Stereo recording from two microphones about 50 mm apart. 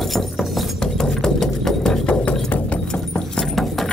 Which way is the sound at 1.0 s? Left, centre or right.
Centre.